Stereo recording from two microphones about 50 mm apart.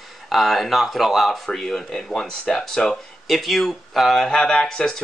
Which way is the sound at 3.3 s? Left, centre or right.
Centre.